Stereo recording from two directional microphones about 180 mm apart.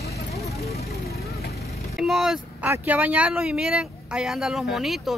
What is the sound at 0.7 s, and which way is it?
Vehicle, 60° left (ahead or behind).